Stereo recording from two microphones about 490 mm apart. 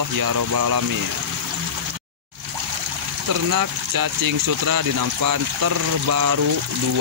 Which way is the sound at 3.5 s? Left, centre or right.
Right.